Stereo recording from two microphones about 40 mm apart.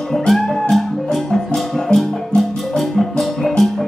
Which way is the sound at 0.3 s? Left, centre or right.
Centre.